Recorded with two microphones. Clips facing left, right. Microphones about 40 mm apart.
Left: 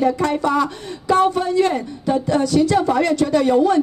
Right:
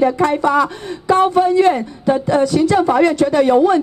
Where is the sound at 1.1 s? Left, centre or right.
Right.